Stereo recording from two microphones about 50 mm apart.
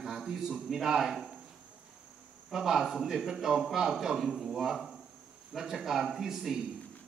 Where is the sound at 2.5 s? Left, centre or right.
Centre.